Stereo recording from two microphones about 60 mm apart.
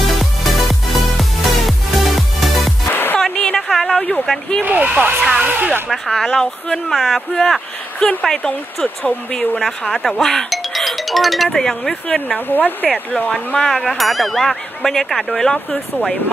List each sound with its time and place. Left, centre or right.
0.0 s music: centre
2.9 s music: left
3.2 s a sound: centre
4.6 s a sound: right
5.9 s speech: centre
12.4 s speech: left
13.3 s speech: centre
13.7 s speech: centre